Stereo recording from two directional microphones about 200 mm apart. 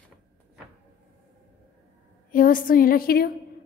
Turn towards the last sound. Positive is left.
turn(degrees=50)  # may be behind; listen again after turning